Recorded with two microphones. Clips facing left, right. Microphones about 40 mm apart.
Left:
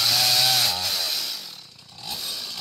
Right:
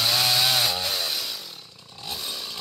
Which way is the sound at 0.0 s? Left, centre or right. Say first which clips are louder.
Even; centre.